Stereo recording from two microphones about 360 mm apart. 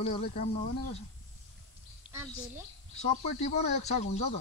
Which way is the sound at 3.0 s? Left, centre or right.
Centre.